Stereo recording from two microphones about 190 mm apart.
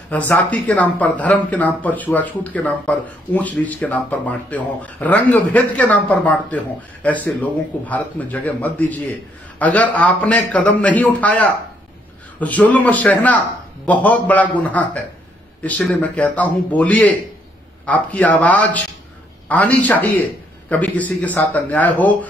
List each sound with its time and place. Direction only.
0.1 s speech: 10° left (ahead or behind)